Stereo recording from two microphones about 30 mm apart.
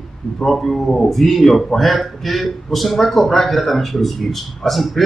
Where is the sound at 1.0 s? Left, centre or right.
Centre.